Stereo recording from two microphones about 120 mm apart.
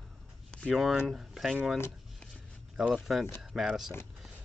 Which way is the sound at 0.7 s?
5° right (ahead or behind).